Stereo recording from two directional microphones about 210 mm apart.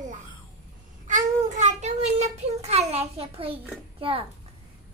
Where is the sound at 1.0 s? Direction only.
35° right (ahead or behind).